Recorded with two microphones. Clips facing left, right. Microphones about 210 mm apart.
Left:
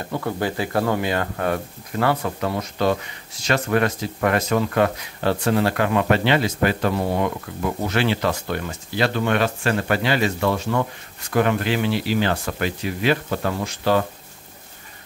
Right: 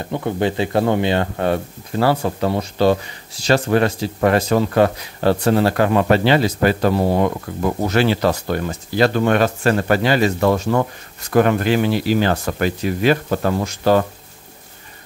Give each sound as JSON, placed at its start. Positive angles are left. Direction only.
{"t": 0.0, "sound": "speech", "side_deg": -20}